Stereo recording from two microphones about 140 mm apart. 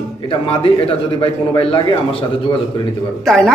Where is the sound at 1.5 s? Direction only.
40° left (ahead or behind).